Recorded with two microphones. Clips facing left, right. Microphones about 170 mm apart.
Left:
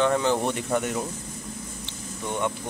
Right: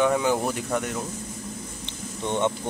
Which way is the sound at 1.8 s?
25° right (ahead or behind).